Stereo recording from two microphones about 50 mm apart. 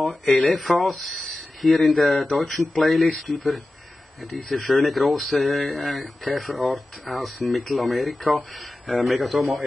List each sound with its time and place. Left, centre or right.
0.3 s speech: left
0.6 s speech: centre